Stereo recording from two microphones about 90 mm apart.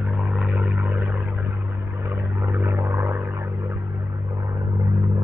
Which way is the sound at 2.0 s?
25° right (ahead or behind).